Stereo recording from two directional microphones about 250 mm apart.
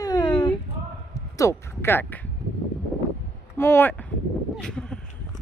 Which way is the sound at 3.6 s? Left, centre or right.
Centre.